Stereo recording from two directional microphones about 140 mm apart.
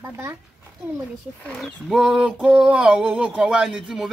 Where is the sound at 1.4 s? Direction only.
5° left (ahead or behind).